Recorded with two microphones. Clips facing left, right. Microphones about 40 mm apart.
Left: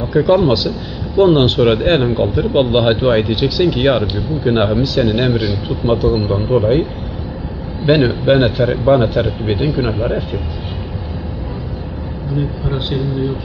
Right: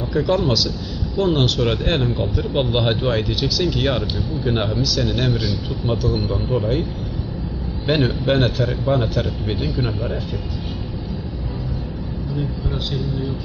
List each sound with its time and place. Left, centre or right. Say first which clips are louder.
0.0 s a man's voice: left 7 dB; left
7.8 s a man's voice: left 7 dB; centre
12.7 s a man's voice: left 7 dB; left